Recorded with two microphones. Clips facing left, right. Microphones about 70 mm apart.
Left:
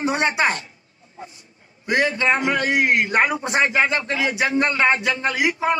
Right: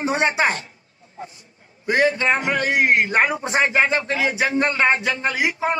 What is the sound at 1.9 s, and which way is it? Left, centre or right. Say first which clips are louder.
A man's voice: right 1 dB; right.